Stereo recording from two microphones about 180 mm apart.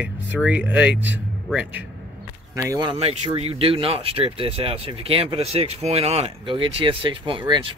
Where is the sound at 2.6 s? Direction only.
20° right (ahead or behind).